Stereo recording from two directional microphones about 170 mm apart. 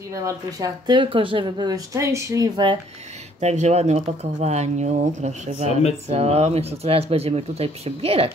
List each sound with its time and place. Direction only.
0.1 s speech: 20° right (ahead or behind)
3.3 s speech: 40° right (ahead or behind)